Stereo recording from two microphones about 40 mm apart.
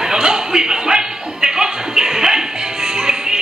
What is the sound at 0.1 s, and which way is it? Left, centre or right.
Music, centre.